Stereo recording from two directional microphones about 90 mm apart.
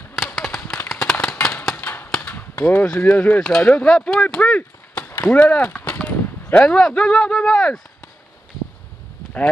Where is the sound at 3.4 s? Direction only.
10° left (ahead or behind).